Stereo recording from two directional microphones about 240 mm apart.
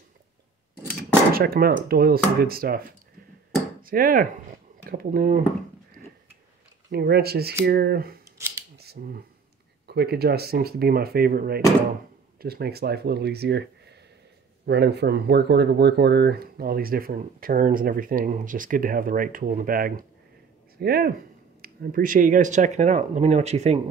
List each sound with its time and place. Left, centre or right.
1.3 s speech: right
3.8 s speech: right
6.9 s speech: right
8.7 s a sound: right
9.8 s speech: right